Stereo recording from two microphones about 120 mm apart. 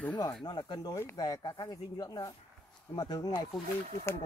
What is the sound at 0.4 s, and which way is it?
Speech, 40° left (ahead or behind).